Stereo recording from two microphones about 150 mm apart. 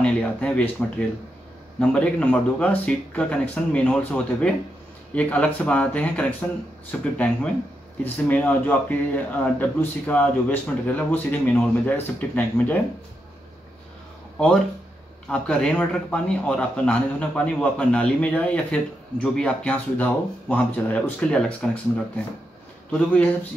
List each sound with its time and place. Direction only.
0.0 s a sound: 10° left (ahead or behind)
1.8 s a man's voice: 10° left (ahead or behind)
15.2 s a man's voice: 5° left (ahead or behind)
22.8 s a man's voice: 10° left (ahead or behind)